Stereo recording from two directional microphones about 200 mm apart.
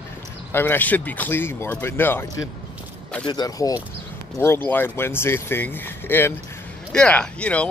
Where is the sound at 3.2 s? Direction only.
20° left (ahead or behind).